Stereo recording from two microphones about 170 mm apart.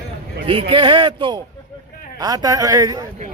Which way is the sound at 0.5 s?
30° right (ahead or behind).